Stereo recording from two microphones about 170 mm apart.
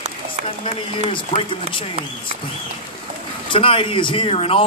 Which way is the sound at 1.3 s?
30° left (ahead or behind).